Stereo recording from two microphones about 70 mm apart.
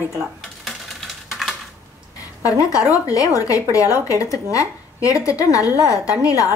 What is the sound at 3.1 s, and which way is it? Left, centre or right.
A woman's voice, left.